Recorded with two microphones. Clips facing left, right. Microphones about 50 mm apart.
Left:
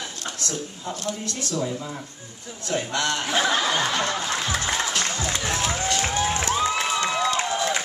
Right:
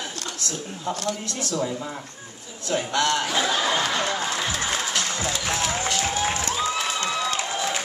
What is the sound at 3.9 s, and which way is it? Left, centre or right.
Speech, right.